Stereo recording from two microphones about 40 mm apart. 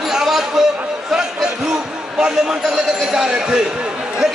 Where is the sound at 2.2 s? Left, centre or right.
Right.